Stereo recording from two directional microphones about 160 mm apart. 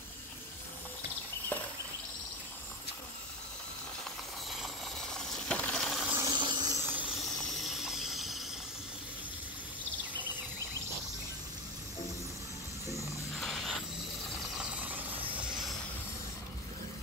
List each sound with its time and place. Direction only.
1.5 s cricket: 10° left (ahead or behind)
5.2 s coin: 5° left (ahead or behind)
6.1 s hiss: 25° right (ahead or behind)
7.2 s a sound: centre (ahead or behind)
13.4 s a sound: centre (ahead or behind)
14.6 s mechanisms: 10° right (ahead or behind)